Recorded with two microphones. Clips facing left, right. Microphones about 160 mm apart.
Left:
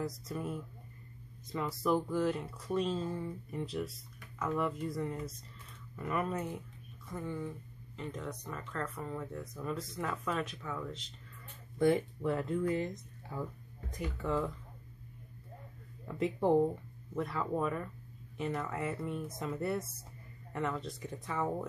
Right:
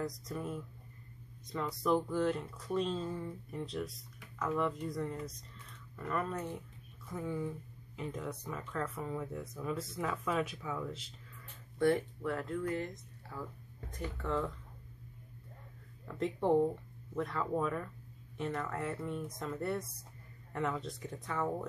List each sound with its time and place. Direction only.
0.0 s speech: 5° left (ahead or behind)
7.1 s speech: 5° right (ahead or behind)
11.8 s speech: 15° left (ahead or behind)
16.1 s speech: 5° left (ahead or behind)